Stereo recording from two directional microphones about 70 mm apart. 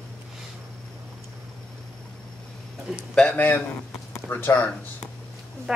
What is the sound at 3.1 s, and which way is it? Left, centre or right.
Speech, centre.